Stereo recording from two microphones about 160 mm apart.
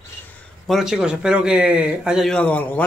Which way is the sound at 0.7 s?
Centre (ahead or behind).